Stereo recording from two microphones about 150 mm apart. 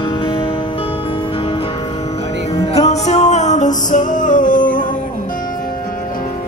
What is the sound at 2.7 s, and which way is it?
Music, 45° left (ahead or behind).